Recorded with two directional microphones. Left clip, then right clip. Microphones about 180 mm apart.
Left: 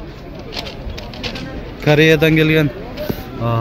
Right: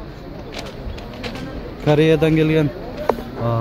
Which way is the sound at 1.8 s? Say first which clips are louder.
Left 3 dB; centre (ahead or behind).